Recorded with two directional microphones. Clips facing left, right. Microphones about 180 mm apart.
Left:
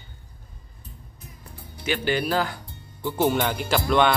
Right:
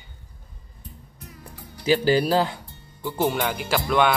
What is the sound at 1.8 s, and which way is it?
Speech, 35° right (ahead or behind).